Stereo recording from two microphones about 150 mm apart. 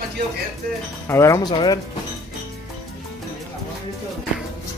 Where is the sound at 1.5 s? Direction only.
35° left (ahead or behind).